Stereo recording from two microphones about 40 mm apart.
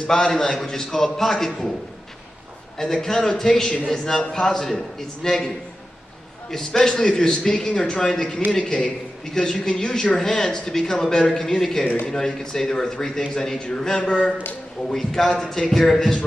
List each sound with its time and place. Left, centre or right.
0.1 s a man's voice: centre
2.8 s a man's voice: centre
6.5 s a man's voice: centre